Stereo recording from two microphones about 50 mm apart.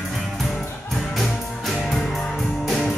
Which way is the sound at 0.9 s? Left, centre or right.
Centre.